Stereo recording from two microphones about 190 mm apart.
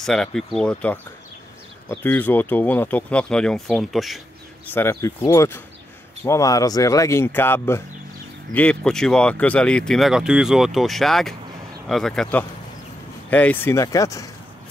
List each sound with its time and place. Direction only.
0.0 s speech: 5° left (ahead or behind)
4.7 s speech: 15° left (ahead or behind)